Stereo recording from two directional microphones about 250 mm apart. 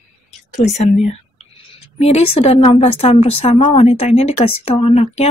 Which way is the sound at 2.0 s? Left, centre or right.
Left.